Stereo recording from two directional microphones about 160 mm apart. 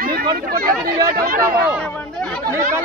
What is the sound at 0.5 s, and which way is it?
Speech, 70° right (ahead or behind).